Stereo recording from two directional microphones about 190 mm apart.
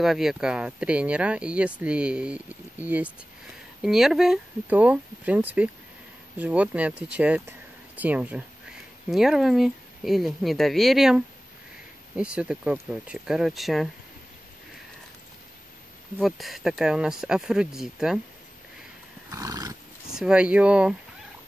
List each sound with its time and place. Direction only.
0.0 s speech: centre (ahead or behind)
16.2 s speech: centre (ahead or behind)
19.3 s horse: 20° right (ahead or behind)
20.2 s speech: 5° right (ahead or behind)